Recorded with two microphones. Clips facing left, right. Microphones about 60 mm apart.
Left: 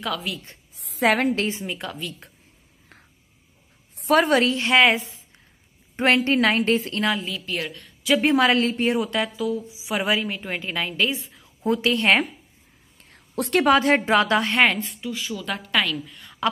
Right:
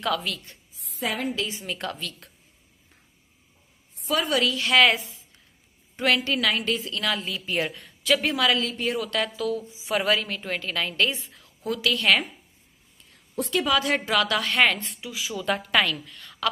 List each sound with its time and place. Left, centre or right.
0.0 s a woman's voice: centre
0.7 s a woman's voice: left
1.7 s a woman's voice: centre
4.1 s a woman's voice: left
7.2 s a woman's voice: centre
8.2 s a woman's voice: left
9.2 s a woman's voice: centre
11.6 s a woman's voice: left
13.5 s speech: left
13.7 s a woman's voice: left
14.8 s a woman's voice: centre
16.1 s a sound: centre